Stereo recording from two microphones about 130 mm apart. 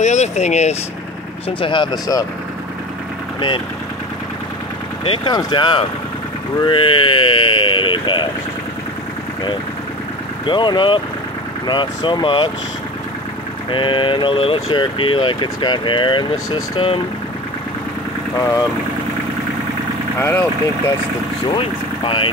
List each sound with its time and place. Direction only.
0.0 s speech: 60° left (ahead or behind)
1.6 s speech: 40° left (ahead or behind)
3.3 s speech: 40° left (ahead or behind)
5.0 s speech: 40° left (ahead or behind)
10.4 s speech: 35° left (ahead or behind)
13.7 s speech: 40° left (ahead or behind)
20.2 s speech: 20° left (ahead or behind)
21.5 s speech: 45° left (ahead or behind)